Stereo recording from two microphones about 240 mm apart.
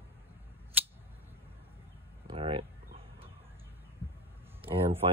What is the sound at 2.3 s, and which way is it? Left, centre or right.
Speech, right.